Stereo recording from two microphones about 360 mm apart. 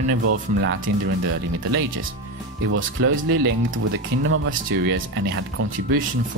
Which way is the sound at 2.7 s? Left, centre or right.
Right.